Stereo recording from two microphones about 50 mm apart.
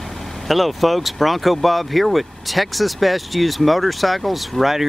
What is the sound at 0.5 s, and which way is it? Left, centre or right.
Speech, centre.